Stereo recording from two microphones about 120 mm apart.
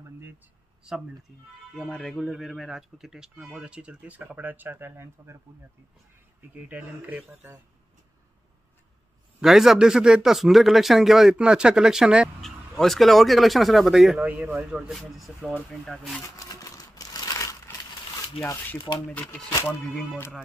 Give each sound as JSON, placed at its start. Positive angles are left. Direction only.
{"t": 1.8, "sound": "speech", "side_deg": 5}
{"t": 6.5, "sound": "speech", "side_deg": -15}
{"t": 9.4, "sound": "speech", "side_deg": -5}
{"t": 14.2, "sound": "speech", "side_deg": -15}
{"t": 16.3, "sound": "a sound", "side_deg": 30}
{"t": 18.9, "sound": "speech", "side_deg": 10}